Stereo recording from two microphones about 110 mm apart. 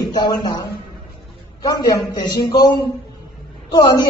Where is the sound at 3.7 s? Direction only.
40° left (ahead or behind).